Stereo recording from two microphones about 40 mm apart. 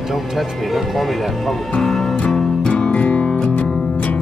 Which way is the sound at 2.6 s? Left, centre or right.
Left.